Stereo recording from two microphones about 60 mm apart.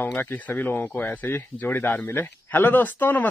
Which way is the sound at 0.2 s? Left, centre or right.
Left.